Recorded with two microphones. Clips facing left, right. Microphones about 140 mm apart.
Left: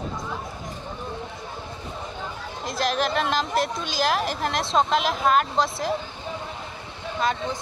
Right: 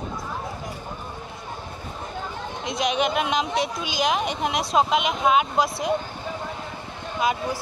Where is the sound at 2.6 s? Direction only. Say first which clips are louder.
Right 1 dB; centre (ahead or behind).